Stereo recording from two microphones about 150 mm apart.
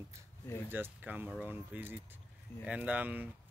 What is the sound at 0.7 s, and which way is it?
Speech, 15° right (ahead or behind).